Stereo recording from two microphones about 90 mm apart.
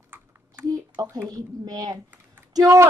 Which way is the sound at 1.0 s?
45° right (ahead or behind).